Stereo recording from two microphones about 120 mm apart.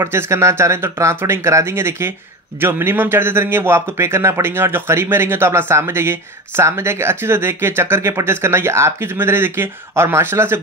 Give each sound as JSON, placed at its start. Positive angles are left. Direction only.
{"t": 0.0, "sound": "speech", "side_deg": -20}